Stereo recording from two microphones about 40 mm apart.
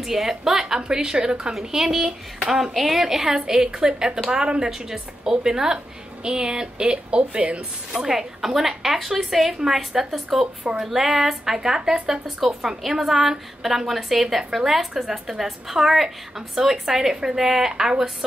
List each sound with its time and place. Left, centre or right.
0.0 s a woman's voice: centre
0.5 s a sound: centre
0.7 s a woman's voice: centre
1.5 s a woman's voice: centre
6.2 s a woman's voice: right
7.9 s a woman's voice: centre